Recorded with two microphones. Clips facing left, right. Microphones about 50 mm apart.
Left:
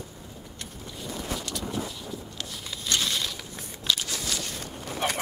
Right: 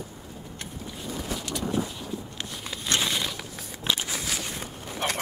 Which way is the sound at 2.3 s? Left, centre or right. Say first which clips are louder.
Right 2 dB; right.